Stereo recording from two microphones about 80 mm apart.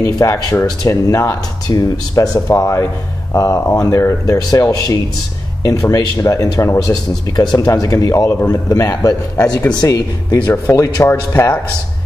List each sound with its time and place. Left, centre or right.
0.0 s speech: left
6.9 s speech: left